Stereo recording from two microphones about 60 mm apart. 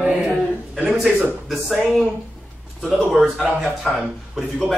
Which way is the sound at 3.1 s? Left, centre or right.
Centre.